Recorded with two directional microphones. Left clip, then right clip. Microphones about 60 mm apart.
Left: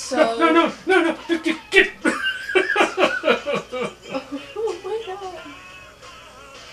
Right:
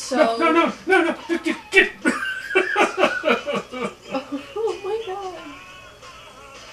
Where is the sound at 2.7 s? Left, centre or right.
Centre.